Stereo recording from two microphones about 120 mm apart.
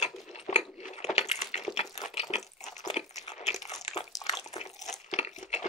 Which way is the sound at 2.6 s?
75° left (ahead or behind).